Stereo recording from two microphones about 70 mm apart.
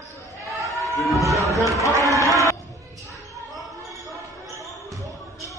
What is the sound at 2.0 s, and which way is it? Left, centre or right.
Music, right.